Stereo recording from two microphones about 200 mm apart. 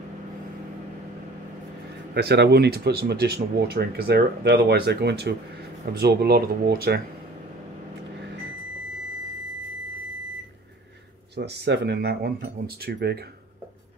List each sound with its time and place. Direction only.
2.1 s speech: 55° right (ahead or behind)
11.3 s speech: 55° right (ahead or behind)